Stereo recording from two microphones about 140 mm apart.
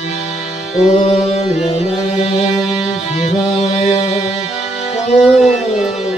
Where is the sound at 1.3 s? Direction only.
50° left (ahead or behind).